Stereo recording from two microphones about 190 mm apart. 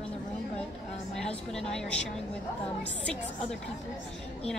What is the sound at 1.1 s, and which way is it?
Speech, 5° left (ahead or behind).